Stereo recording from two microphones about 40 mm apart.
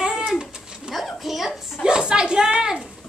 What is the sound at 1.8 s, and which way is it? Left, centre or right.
Speech, right.